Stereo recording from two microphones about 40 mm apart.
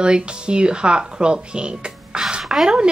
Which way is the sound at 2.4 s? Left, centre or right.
Centre.